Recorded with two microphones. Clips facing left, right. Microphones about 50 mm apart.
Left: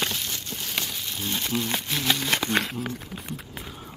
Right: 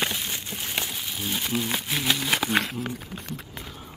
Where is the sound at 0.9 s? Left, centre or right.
Centre.